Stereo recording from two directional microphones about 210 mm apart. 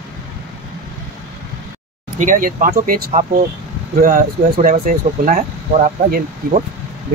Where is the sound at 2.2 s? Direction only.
40° right (ahead or behind).